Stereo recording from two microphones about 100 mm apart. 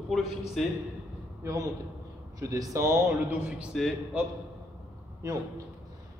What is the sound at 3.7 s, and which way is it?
Speech, 5° left (ahead or behind).